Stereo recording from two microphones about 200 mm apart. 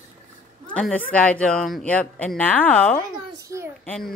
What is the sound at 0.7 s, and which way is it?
A woman's voice, 5° left (ahead or behind).